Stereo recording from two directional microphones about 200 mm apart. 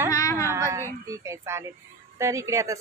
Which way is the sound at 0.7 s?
15° right (ahead or behind).